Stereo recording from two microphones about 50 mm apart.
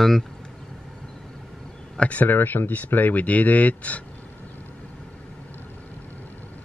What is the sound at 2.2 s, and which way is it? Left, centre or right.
Speech, left.